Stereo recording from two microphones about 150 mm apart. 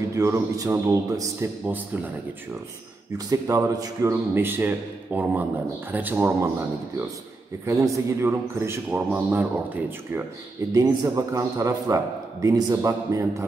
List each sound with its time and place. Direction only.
0.1 s a man's voice: 20° right (ahead or behind)
3.3 s a man's voice: 20° right (ahead or behind)
7.6 s a man's voice: 20° right (ahead or behind)